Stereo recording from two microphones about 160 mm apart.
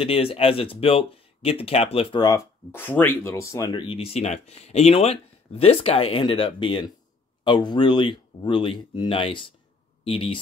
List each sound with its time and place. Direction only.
0.0 s speech: 35° left (ahead or behind)
2.7 s speech: 10° left (ahead or behind)
3.8 s speech: 35° left (ahead or behind)